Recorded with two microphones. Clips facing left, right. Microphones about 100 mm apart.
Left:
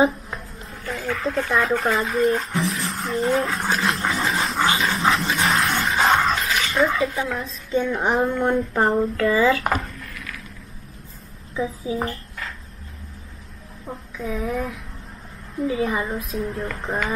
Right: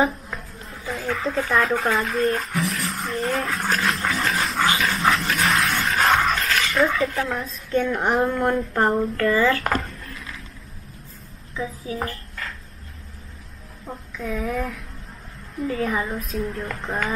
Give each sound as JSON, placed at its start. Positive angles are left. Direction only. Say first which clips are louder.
{"t": 0.7, "sound": "a woman's voice", "louder": "even", "side_deg": 0}
{"t": 10.1, "sound": "vehicle", "louder": "left 1 dB", "side_deg": -25}
{"t": 11.5, "sound": "a woman's voice", "louder": "left 4 dB", "side_deg": 20}
{"t": 13.8, "sound": "a woman's voice", "louder": "left 1 dB", "side_deg": 5}